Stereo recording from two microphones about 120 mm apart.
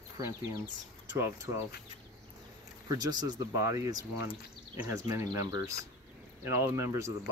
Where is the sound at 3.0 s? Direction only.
35° right (ahead or behind).